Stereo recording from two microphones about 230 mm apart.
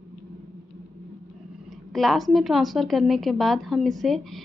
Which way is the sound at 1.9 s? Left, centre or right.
Centre.